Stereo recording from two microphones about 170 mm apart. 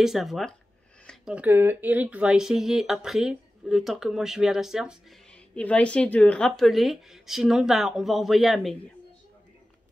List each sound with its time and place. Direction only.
0.0 s speech: centre (ahead or behind)
5.5 s speech: 5° left (ahead or behind)